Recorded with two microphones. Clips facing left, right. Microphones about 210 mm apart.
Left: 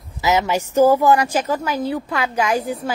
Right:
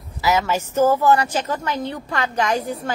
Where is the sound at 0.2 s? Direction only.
20° left (ahead or behind).